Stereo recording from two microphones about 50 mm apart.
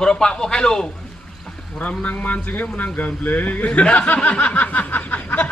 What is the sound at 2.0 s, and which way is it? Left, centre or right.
Speech, left.